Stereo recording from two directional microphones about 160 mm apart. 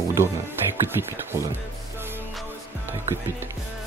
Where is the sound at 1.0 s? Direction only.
20° left (ahead or behind).